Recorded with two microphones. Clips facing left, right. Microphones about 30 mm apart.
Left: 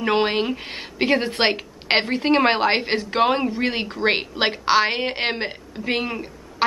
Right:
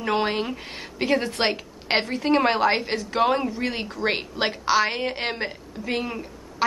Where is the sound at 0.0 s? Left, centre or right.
Left.